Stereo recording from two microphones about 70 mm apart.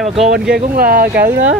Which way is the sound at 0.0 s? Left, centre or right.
Centre.